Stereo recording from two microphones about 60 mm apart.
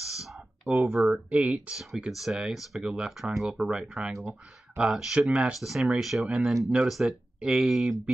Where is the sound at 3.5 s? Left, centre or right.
Centre.